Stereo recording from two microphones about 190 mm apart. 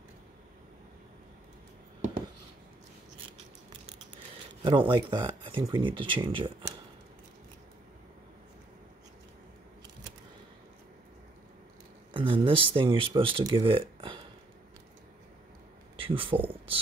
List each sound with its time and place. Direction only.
4.6 s speech: 25° right (ahead or behind)
12.1 s speech: 25° right (ahead or behind)
16.0 s speech: 30° right (ahead or behind)